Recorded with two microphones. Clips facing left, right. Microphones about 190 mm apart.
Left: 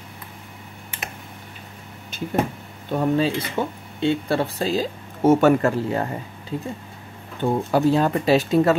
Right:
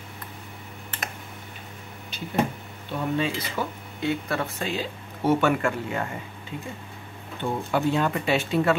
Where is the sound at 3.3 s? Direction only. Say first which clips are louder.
Left 5 dB; 25° left (ahead or behind).